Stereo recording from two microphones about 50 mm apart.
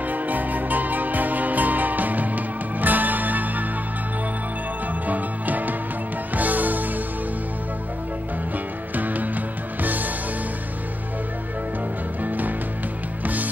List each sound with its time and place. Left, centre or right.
0.0 s music: right
5.0 s music: right
8.9 s music: right
12.2 s music: right